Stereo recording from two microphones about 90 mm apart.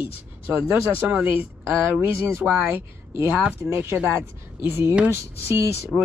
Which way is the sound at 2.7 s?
25° right (ahead or behind).